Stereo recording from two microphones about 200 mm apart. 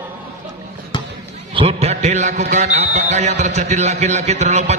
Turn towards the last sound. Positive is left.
turn(degrees=-35)  # may be behind; listen again after turning